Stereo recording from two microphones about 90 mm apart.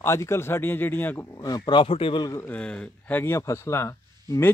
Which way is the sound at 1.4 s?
50° left (ahead or behind).